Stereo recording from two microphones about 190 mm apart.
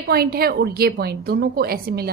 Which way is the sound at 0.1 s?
55° right (ahead or behind).